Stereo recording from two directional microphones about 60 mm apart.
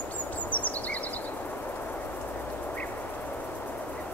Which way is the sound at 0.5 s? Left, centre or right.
Left.